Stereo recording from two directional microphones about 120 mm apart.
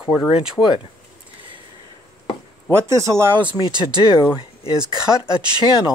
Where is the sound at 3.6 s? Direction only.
35° right (ahead or behind).